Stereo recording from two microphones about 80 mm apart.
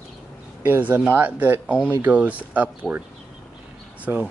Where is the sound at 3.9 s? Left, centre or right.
Centre.